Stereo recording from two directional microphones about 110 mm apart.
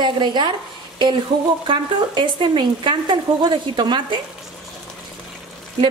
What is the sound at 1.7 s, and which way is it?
A woman's voice, 50° right (ahead or behind).